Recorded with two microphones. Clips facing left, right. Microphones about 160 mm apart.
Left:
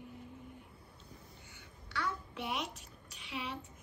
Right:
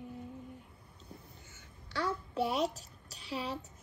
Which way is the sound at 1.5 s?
40° right (ahead or behind).